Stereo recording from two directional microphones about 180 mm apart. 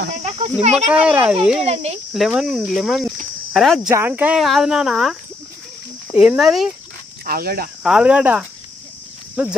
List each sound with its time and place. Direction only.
0.1 s a sound: 35° right (ahead or behind)
0.8 s a child's voice: 5° right (ahead or behind)
1.6 s speech: 35° right (ahead or behind)
2.1 s speech: centre (ahead or behind)
3.9 s speech: 10° right (ahead or behind)
6.1 s speech: 5° right (ahead or behind)
7.2 s speech: 55° right (ahead or behind)
7.8 s a child's voice: 5° right (ahead or behind)